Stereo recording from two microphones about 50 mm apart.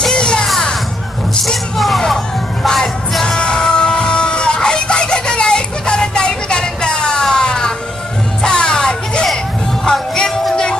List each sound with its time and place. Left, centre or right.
0.0 s music: centre
1.4 s music: centre
7.2 s a sound: centre
8.4 s music: centre